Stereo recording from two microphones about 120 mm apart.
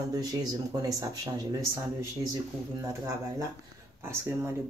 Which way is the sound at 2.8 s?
25° right (ahead or behind).